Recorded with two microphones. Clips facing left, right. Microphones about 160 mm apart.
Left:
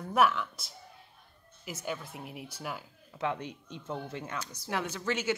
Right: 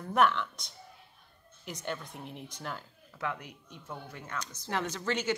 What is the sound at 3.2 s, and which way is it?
Speech, 25° left (ahead or behind).